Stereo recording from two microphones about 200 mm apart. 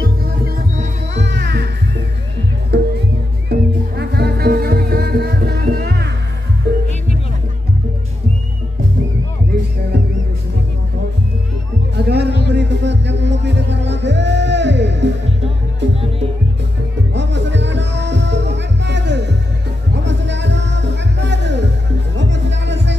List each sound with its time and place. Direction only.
0.0 s music: 45° right (ahead or behind)
11.9 s a sound: 55° right (ahead or behind)
12.4 s music: 60° right (ahead or behind)
17.1 s music: 60° right (ahead or behind)